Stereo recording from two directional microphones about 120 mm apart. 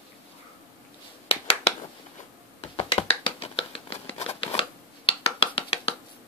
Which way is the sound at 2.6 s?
55° left (ahead or behind).